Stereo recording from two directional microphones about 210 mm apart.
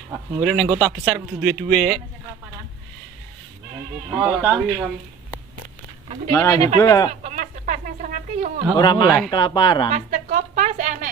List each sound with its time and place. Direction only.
0.1 s speech: centre (ahead or behind)
4.1 s speech: 10° right (ahead or behind)
6.3 s speech: 15° left (ahead or behind)
7.1 s a sound: 35° right (ahead or behind)
8.7 s speech: 20° left (ahead or behind)
9.0 s speech: centre (ahead or behind)
9.3 s speech: 20° left (ahead or behind)
9.9 s a sound: 35° right (ahead or behind)